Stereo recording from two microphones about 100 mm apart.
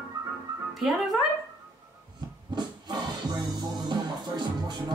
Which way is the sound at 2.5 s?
40° right (ahead or behind).